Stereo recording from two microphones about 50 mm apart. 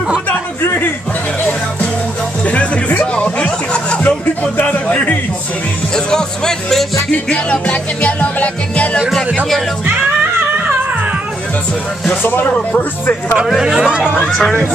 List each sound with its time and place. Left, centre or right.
2.4 s music: left
4.6 s a sound: left
5.9 s music: centre
7.1 s music: left
12.2 s speech: left
13.6 s speech: centre
13.8 s speech: centre
14.2 s music: centre